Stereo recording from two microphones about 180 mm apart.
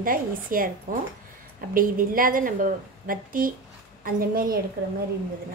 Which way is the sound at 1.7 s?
50° right (ahead or behind).